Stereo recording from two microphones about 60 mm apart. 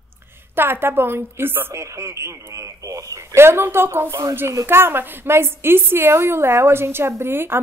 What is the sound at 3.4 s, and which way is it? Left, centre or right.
A woman's voice, right.